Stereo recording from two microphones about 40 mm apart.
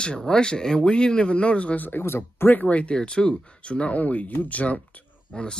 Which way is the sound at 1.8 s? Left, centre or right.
Left.